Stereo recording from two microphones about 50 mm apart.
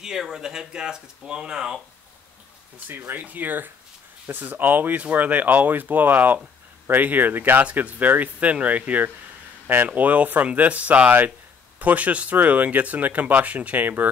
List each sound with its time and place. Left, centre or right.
0.0 s speech: centre
3.2 s speech: right